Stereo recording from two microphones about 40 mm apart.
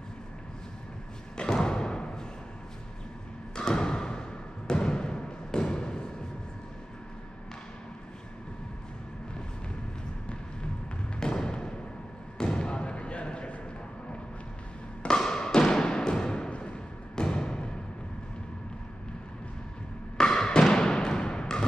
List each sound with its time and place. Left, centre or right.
1.3 s music: centre
3.5 s a sound: centre
11.1 s thump: centre
12.4 s basketball bounce: left
15.0 s thump: centre
17.1 s music: left
20.2 s music: centre